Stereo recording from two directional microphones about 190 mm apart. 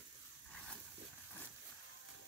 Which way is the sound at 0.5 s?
5° left (ahead or behind).